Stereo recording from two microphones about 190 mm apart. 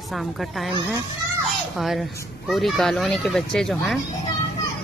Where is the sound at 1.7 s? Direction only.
Centre (ahead or behind).